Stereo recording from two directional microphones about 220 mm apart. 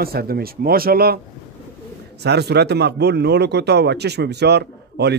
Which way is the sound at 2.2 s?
50° right (ahead or behind).